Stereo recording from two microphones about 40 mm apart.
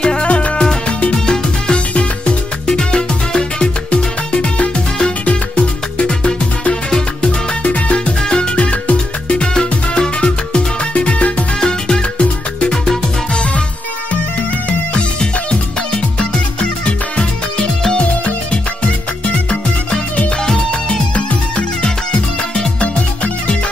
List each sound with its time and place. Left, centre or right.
0.0 s music: left
16.8 s music: left
21.1 s music: left